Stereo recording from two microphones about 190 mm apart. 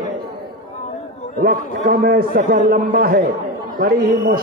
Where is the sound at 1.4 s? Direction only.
50° right (ahead or behind).